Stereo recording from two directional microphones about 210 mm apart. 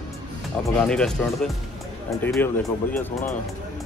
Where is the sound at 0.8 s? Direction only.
5° left (ahead or behind).